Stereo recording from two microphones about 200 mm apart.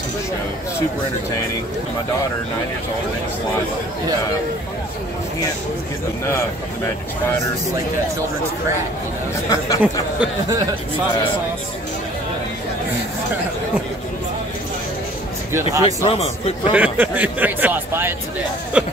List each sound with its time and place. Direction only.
9.5 s speech: 15° left (ahead or behind)
15.8 s a man's voice: 30° left (ahead or behind)
16.7 s speech: 10° right (ahead or behind)